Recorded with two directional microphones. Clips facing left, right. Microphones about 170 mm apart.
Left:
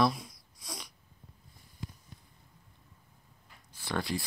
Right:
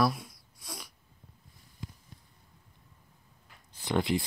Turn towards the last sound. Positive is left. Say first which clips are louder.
# right 5 dB
turn(degrees=-20)  # may be behind; listen again after turning